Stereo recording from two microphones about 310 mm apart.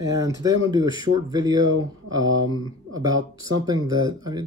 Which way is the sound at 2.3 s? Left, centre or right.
Right.